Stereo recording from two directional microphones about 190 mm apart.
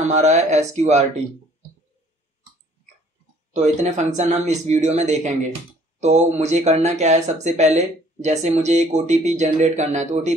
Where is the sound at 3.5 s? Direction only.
40° right (ahead or behind).